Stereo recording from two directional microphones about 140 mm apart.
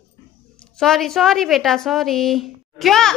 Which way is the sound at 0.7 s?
Centre (ahead or behind).